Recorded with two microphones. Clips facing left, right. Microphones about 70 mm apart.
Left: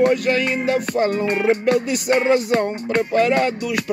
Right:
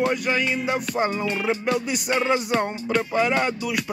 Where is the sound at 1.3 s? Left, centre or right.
Left.